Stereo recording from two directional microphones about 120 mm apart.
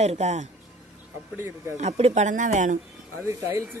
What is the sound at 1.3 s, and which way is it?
Speech, 20° right (ahead or behind).